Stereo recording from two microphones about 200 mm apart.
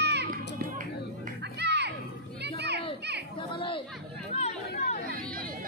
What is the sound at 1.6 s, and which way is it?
Music, 55° right (ahead or behind).